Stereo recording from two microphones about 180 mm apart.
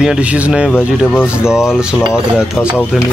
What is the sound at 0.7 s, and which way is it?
Speech, 10° left (ahead or behind).